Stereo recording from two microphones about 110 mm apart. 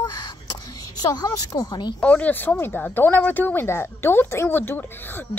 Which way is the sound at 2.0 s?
10° left (ahead or behind).